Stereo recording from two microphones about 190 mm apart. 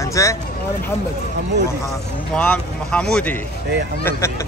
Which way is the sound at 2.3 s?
5° left (ahead or behind).